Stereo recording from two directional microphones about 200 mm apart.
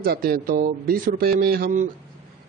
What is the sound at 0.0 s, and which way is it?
A man's voice, 50° right (ahead or behind).